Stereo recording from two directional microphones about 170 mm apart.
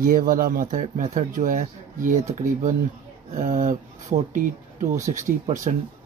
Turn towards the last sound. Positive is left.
turn(degrees=-45)  # may be behind; listen again after turning